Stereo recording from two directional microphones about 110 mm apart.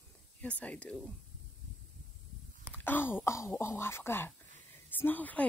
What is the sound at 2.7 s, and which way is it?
Speech, 20° left (ahead or behind).